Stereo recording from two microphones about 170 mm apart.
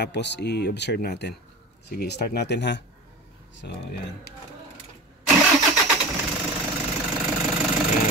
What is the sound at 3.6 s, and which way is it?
Speech, 75° left (ahead or behind).